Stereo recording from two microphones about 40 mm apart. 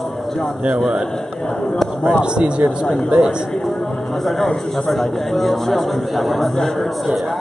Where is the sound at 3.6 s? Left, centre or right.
Centre.